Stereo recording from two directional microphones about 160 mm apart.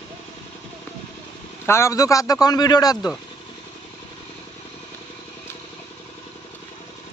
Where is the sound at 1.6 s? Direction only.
15° left (ahead or behind).